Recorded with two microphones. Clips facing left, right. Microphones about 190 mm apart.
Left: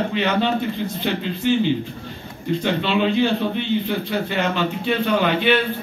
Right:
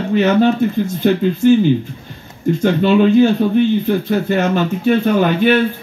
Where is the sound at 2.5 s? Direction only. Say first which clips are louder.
Right 7 dB; 45° right (ahead or behind).